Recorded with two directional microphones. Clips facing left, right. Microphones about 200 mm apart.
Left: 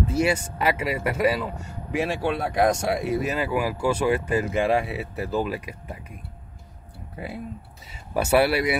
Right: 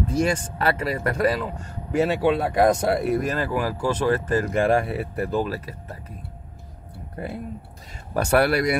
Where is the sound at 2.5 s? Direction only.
Centre (ahead or behind).